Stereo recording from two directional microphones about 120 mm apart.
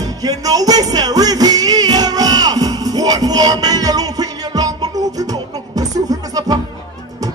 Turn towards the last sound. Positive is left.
turn(degrees=-30)  # may be behind; listen again after turning